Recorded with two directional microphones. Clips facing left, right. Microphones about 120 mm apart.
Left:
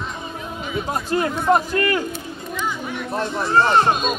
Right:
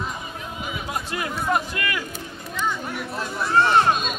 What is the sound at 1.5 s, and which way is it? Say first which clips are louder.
Speech: left 8 dB; 35° left (ahead or behind).